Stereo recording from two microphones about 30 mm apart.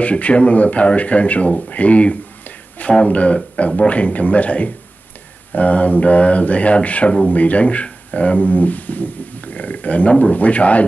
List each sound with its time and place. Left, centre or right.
0.0 s speech: left